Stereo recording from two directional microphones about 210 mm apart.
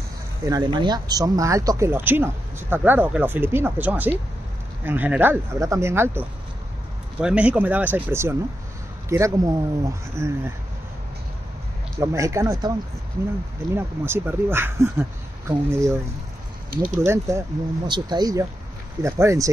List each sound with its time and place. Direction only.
0.5 s speech: 20° right (ahead or behind)
12.0 s speech: 15° right (ahead or behind)
13.7 s speech: 10° right (ahead or behind)
16.7 s speech: 45° right (ahead or behind)
17.0 s speech: 15° right (ahead or behind)